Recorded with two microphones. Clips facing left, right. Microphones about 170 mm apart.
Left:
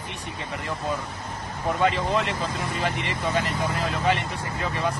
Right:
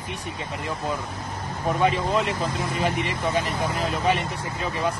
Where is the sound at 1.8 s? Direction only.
15° right (ahead or behind).